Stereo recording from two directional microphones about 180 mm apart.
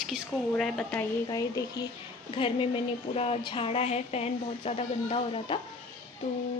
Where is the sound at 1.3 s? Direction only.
20° left (ahead or behind).